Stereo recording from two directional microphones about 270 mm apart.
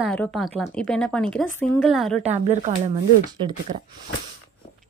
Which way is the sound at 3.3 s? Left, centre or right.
Centre.